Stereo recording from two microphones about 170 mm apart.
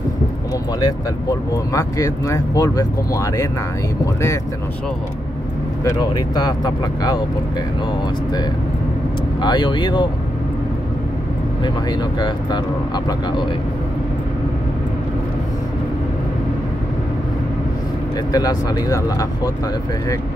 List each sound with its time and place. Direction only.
1.7 s speech: 20° left (ahead or behind)
5.9 s speech: 25° left (ahead or behind)
9.4 s speech: 25° left (ahead or behind)
11.6 s speech: 25° left (ahead or behind)
18.3 s speech: 25° left (ahead or behind)